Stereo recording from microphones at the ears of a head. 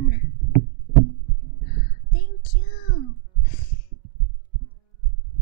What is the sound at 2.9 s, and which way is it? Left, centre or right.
Music, right.